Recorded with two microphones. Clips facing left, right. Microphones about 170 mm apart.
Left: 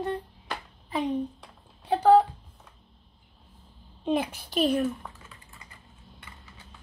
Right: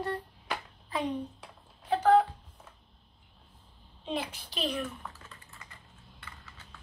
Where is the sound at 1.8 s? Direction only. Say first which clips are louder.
Left 4 dB; 35° left (ahead or behind).